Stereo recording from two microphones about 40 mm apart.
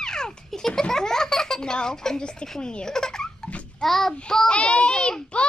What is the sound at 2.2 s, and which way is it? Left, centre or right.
Speech, left.